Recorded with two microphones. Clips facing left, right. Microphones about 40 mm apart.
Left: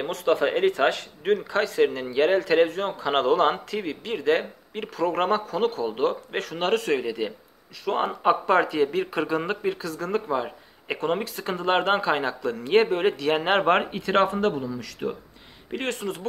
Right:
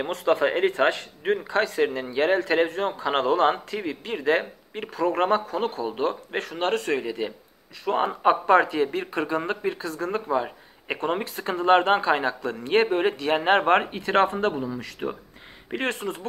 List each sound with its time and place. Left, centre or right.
0.1 s a man's voice: centre
5.9 s a man's voice: centre
9.8 s a man's voice: centre
14.0 s speech: centre